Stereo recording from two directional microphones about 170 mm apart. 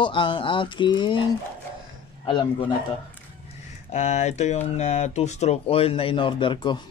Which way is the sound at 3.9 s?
40° left (ahead or behind).